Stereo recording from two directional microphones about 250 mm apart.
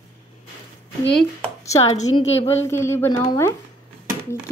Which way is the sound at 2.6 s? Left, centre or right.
Centre.